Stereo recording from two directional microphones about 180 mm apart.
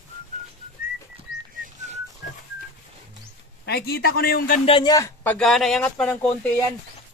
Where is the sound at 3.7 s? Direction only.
60° left (ahead or behind).